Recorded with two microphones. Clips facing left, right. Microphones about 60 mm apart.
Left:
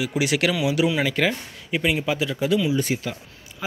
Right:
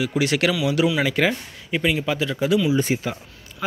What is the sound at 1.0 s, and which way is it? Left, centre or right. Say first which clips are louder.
Speech: right 2 dB; centre.